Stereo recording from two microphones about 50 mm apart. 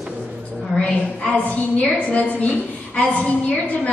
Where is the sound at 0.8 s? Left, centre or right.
Centre.